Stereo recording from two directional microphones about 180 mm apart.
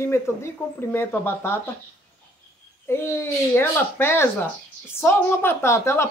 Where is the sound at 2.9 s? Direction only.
15° left (ahead or behind).